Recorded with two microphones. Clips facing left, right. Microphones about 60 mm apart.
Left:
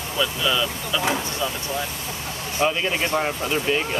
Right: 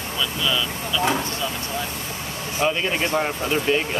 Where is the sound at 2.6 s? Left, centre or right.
Centre.